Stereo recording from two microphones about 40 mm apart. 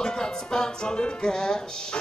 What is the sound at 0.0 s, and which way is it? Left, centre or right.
Music, centre.